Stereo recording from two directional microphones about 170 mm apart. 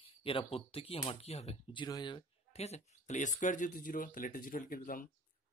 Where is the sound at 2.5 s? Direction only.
40° left (ahead or behind).